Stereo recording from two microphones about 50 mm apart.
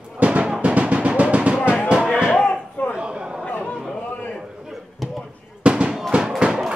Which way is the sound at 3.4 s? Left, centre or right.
Left.